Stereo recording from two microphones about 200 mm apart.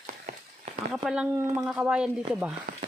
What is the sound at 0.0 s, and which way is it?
Run, 35° right (ahead or behind).